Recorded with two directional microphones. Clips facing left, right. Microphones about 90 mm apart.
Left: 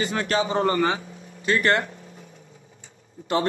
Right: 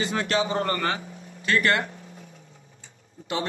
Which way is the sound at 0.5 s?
20° left (ahead or behind).